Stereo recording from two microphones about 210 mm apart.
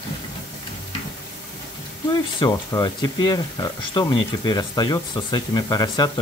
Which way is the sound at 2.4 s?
20° left (ahead or behind).